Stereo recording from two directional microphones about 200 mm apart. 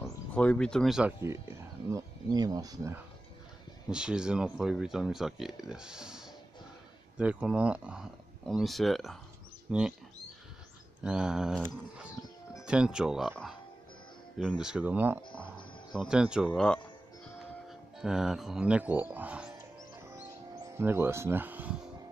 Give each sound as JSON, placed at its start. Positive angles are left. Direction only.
{"t": 0.0, "sound": "speech", "side_deg": 5}
{"t": 1.2, "sound": "speech", "side_deg": -15}
{"t": 3.9, "sound": "speech", "side_deg": -5}
{"t": 11.1, "sound": "speech", "side_deg": -5}
{"t": 14.6, "sound": "speech", "side_deg": -5}
{"t": 20.6, "sound": "speech", "side_deg": -15}